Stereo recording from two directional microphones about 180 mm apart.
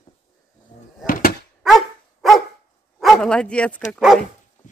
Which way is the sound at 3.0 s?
Centre (ahead or behind).